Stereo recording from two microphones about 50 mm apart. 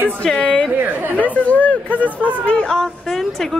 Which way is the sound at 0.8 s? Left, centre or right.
Right.